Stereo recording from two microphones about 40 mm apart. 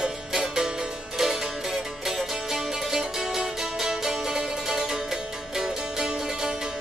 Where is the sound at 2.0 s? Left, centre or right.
Centre.